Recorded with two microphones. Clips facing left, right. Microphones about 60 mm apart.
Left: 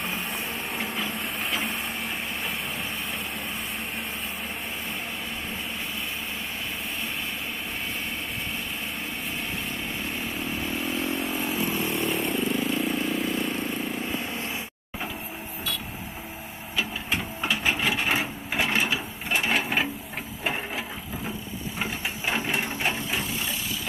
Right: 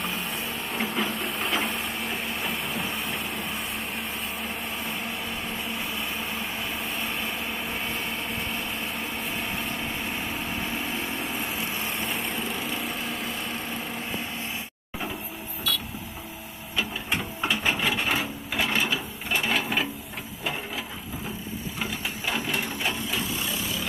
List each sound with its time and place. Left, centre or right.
0.7 s a sound: centre
9.7 s vehicle: centre
16.7 s sewing machine: centre
18.0 s sewing machine: centre
21.7 s sewing machine: left